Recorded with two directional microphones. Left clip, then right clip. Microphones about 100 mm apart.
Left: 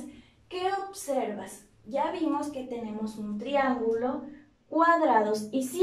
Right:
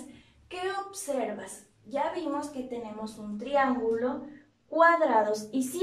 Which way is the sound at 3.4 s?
5° left (ahead or behind).